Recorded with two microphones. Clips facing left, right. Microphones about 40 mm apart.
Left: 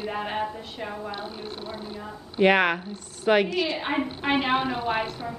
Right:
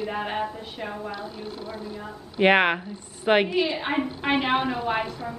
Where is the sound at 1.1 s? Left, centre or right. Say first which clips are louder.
Even; left.